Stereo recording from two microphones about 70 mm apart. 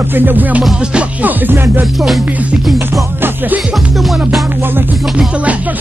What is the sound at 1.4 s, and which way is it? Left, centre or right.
Music, right.